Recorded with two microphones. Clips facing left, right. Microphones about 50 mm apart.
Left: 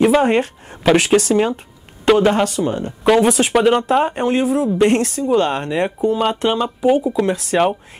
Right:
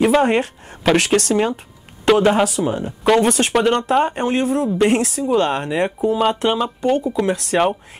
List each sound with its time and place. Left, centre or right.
0.0 s speech: centre